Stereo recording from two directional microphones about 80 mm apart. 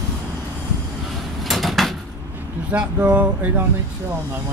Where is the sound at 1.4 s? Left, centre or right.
Centre.